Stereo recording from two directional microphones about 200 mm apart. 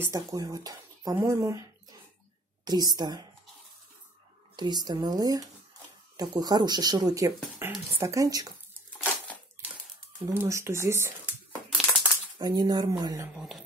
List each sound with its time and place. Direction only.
0.0 s speech: 15° right (ahead or behind)
4.6 s speech: 20° right (ahead or behind)
8.9 s crumpling: 5° left (ahead or behind)
10.2 s speech: 15° right (ahead or behind)
12.4 s speech: 20° right (ahead or behind)